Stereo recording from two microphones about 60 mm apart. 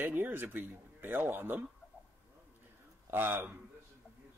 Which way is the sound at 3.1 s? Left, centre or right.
Right.